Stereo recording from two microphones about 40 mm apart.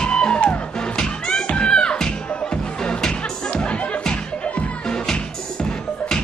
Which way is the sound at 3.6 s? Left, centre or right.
Centre.